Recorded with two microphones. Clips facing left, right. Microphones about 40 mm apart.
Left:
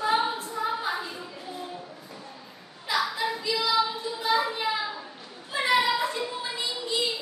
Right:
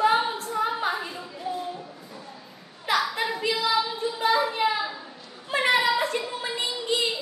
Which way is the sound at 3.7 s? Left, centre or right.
Right.